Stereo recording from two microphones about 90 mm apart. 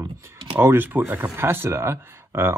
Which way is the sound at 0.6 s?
25° right (ahead or behind).